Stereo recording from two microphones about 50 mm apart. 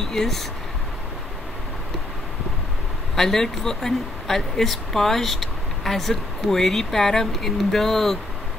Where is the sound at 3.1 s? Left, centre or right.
Centre.